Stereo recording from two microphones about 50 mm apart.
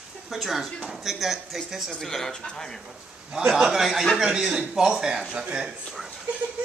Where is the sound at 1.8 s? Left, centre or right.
Centre.